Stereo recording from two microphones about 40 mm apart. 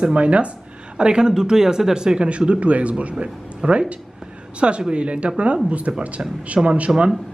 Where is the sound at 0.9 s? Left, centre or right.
Right.